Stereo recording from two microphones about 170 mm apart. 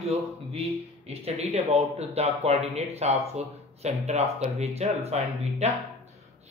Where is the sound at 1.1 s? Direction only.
35° right (ahead or behind).